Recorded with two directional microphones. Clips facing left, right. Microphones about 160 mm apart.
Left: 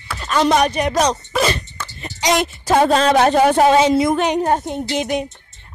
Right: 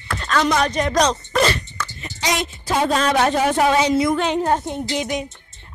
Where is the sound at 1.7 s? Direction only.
30° left (ahead or behind).